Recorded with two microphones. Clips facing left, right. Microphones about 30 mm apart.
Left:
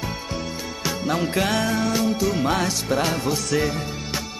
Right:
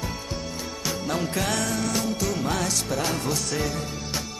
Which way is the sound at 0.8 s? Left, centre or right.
Left.